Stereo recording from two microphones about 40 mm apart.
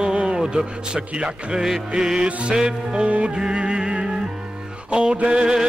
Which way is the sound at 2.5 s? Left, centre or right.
Centre.